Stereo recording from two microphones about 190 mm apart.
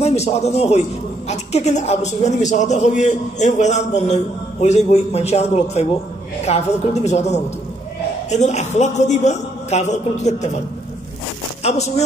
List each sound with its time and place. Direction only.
0.0 s a man's voice: 35° left (ahead or behind)
11.6 s speech: 35° left (ahead or behind)